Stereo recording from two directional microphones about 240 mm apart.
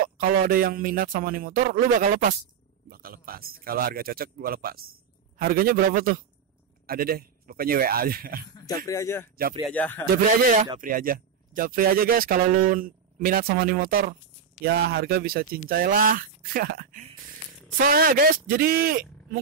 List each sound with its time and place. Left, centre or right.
0.3 s speech: right
8.5 s speech: centre
10.3 s speech: right